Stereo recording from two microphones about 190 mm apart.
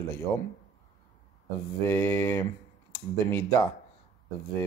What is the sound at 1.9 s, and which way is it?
Speech, 10° left (ahead or behind).